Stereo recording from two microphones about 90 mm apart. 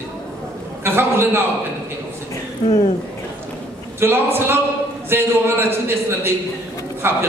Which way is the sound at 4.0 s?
25° right (ahead or behind).